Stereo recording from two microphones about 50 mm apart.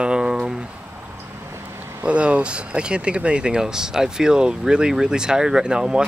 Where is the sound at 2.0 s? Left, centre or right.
Right.